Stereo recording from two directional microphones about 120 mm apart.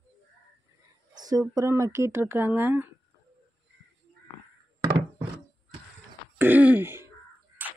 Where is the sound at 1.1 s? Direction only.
35° right (ahead or behind); by 2.8 s 15° right (ahead or behind).